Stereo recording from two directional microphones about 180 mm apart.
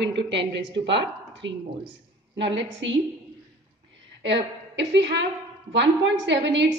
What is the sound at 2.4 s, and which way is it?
Speech, 85° right.